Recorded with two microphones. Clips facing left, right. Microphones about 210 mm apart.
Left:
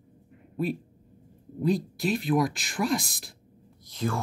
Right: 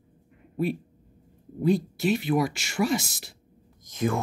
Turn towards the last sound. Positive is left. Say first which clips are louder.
# right 4 dB
turn(degrees=-20)  # may be behind; listen again after turning